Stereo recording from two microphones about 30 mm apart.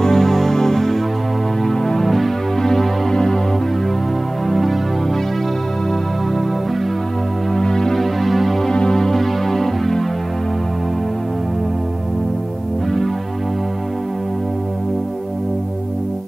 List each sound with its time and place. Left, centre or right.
0.0 s music: centre
2.0 s music: centre
4.5 s music: centre
7.5 s music: left
7.9 s music: centre
8.6 s music: left
8.9 s music: centre